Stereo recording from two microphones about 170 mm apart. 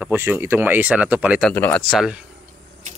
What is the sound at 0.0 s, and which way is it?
Speech, 10° right (ahead or behind).